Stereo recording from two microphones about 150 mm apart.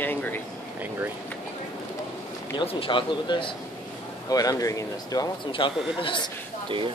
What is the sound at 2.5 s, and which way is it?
Speech, 35° left (ahead or behind).